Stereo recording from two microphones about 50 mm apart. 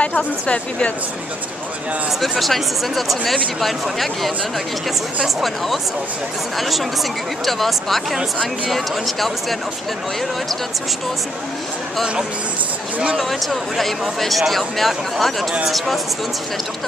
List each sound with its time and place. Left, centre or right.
0.0 s a woman's voice: left
0.5 s speech: left
2.2 s speech: centre
13.2 s speech: centre